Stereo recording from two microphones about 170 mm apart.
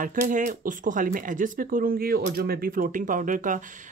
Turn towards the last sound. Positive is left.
turn(degrees=-50)  # may be behind; listen again after turning